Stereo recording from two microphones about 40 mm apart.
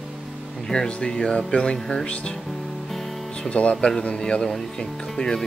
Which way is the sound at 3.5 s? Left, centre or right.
Left.